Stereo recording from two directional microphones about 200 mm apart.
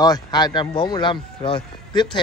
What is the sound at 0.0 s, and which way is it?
Speech, 20° left (ahead or behind).